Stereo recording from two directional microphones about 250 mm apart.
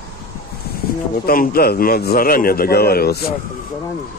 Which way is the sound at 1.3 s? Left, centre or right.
Left.